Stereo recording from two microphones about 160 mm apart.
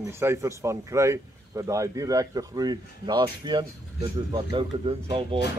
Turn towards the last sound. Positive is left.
turn(degrees=-30)  # may be behind; listen again after turning